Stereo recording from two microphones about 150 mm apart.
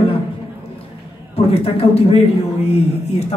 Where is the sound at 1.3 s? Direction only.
40° left (ahead or behind).